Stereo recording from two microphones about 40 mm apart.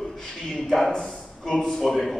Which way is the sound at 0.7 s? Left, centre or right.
Centre.